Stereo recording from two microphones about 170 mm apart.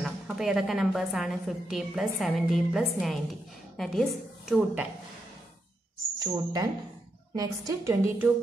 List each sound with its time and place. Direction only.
0.0 s a woman's voice: centre (ahead or behind)
6.1 s a woman's voice: 20° right (ahead or behind)